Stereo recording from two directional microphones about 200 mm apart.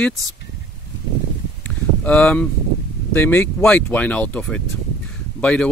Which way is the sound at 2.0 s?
5° left (ahead or behind).